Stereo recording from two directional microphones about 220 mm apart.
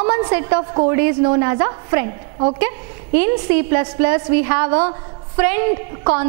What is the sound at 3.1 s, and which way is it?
A woman's voice, 10° right (ahead or behind).